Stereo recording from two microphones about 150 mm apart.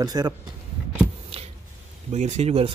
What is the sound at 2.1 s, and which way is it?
Speech, 50° right (ahead or behind).